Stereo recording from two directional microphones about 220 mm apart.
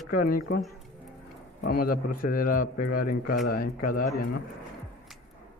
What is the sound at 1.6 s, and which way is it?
A man's voice, 45° left (ahead or behind).